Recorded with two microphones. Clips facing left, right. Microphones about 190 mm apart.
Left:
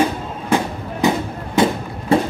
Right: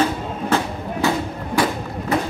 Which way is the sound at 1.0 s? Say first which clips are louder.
Left 3 dB; 25° left (ahead or behind).